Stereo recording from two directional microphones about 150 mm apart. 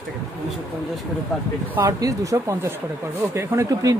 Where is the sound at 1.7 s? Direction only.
20° right (ahead or behind).